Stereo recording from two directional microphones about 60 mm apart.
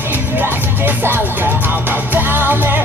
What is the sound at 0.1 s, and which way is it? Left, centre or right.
Music, right.